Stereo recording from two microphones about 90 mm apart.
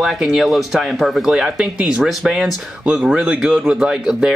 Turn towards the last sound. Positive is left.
turn(degrees=-10)  # may be behind; listen again after turning